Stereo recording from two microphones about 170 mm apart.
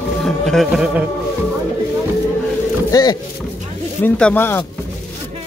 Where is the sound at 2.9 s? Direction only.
25° left (ahead or behind).